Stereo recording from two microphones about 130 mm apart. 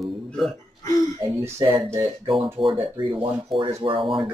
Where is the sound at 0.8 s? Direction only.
25° left (ahead or behind).